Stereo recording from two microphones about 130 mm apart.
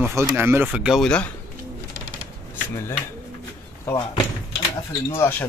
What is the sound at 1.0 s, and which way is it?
Speech, 10° left (ahead or behind).